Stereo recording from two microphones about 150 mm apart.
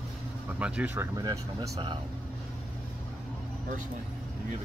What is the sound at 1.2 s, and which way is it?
Speech, 25° right (ahead or behind).